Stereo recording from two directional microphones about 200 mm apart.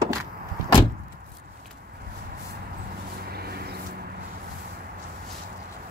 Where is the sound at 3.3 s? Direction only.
50° right (ahead or behind).